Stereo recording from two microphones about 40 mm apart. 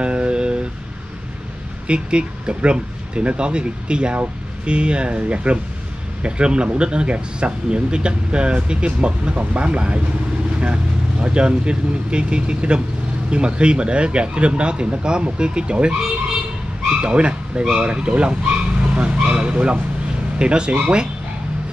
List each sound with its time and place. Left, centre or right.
0.0 s vehicle: right
1.9 s speech: right
9.3 s speech: right
17.0 s speech: right